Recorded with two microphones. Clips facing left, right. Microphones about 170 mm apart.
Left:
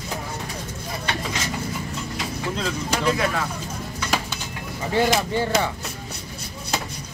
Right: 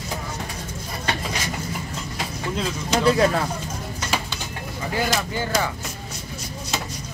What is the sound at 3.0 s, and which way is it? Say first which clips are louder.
Speech: right 5 dB; 35° right (ahead or behind).